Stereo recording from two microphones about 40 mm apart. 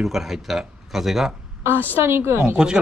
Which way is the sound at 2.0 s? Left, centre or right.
Right.